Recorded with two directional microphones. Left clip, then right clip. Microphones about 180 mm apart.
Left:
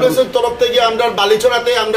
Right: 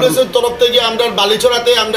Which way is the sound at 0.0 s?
10° left (ahead or behind).